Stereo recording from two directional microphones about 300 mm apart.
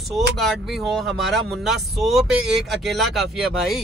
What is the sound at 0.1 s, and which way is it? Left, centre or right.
Speech, centre.